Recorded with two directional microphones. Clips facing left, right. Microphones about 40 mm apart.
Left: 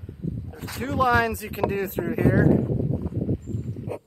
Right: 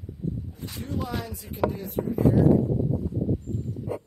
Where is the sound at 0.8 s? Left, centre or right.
Left.